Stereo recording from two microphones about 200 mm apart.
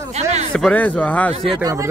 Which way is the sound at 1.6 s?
15° right (ahead or behind).